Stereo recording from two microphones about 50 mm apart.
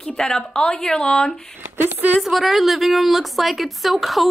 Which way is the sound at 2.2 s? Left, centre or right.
Centre.